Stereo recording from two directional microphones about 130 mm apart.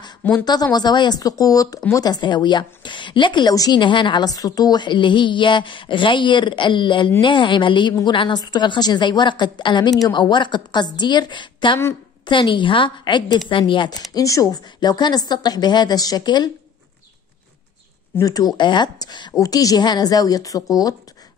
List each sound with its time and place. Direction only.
0.2 s a woman's voice: 15° left (ahead or behind)
0.7 s a woman's voice: 35° left (ahead or behind)
18.2 s a woman's voice: 30° left (ahead or behind)